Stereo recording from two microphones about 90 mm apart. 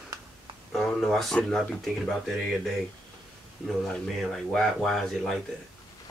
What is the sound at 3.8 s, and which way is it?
Speech, 5° left (ahead or behind).